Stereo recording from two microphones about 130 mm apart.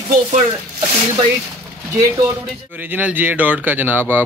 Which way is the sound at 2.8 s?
15° right (ahead or behind).